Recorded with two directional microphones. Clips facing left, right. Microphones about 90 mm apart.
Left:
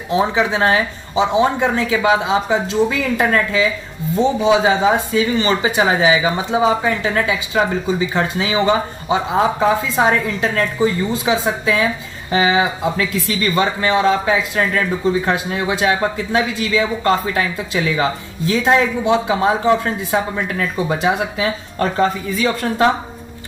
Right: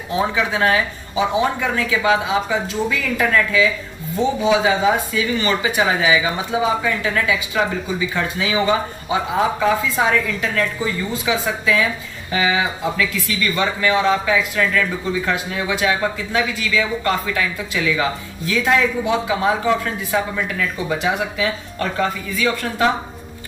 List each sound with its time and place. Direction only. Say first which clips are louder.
0.1 s speech: left 3 dB; 25° left (ahead or behind)